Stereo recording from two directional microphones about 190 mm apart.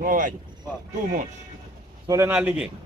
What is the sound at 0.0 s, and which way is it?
Speech, 45° right (ahead or behind).